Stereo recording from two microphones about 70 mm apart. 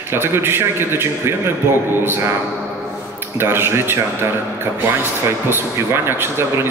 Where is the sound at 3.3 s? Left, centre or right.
Right.